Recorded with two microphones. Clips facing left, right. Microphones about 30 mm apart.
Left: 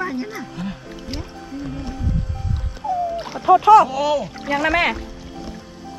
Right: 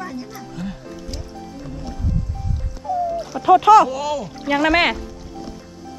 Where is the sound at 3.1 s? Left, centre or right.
Left.